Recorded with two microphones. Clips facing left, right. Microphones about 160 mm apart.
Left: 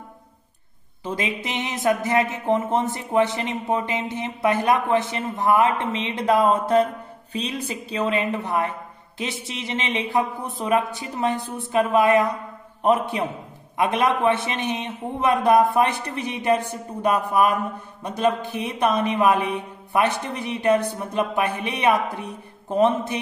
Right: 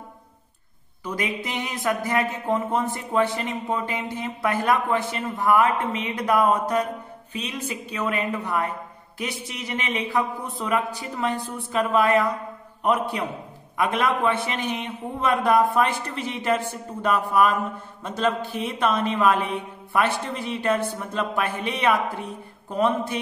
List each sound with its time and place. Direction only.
1.0 s speech: 25° left (ahead or behind)
17.3 s mantra: 15° left (ahead or behind)
18.0 s speech: 15° left (ahead or behind)